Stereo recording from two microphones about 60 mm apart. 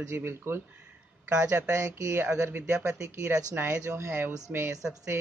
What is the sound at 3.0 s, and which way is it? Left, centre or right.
Speech, right.